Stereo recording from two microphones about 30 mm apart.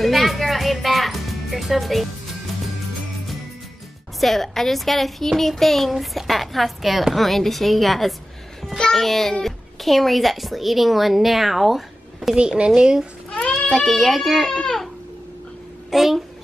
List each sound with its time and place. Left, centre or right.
0.0 s music: centre
4.2 s a child's voice: centre
12.5 s speech: right
13.3 s goat: left
13.7 s a child's voice: centre
15.9 s a child's voice: centre